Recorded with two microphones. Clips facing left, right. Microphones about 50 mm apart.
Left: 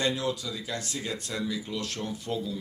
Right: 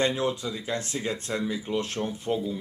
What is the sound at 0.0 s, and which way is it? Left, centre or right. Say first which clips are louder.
Speech: right 3 dB; right.